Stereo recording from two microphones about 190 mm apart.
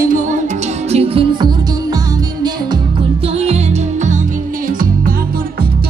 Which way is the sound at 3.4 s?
35° right (ahead or behind).